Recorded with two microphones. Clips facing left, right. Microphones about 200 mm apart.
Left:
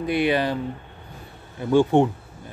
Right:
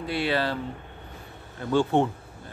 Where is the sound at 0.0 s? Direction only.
15° left (ahead or behind).